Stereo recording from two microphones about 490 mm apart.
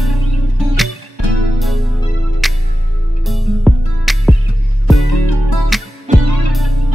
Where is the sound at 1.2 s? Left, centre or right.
Right.